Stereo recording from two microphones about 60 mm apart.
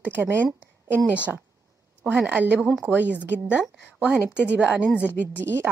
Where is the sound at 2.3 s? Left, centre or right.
Right.